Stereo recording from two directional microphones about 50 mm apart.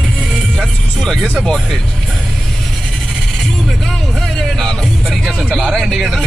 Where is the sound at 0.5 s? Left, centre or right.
Centre.